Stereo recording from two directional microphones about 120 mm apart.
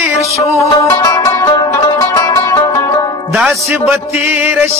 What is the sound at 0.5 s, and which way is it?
Music, 25° left (ahead or behind).